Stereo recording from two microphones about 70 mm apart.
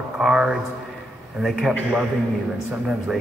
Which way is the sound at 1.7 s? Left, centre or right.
Centre.